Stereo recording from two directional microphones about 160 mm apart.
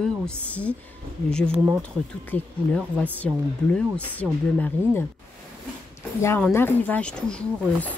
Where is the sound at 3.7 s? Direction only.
5° left (ahead or behind).